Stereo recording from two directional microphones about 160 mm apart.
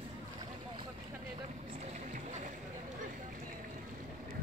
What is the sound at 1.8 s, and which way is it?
Boat, 45° right (ahead or behind).